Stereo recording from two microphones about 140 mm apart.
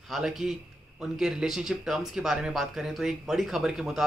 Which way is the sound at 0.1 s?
5° right (ahead or behind).